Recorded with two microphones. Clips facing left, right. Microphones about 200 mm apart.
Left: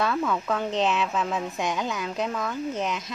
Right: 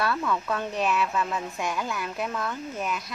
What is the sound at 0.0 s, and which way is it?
A woman's voice, 20° left (ahead or behind).